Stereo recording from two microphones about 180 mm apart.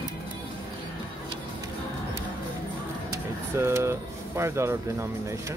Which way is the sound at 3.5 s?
15° right (ahead or behind).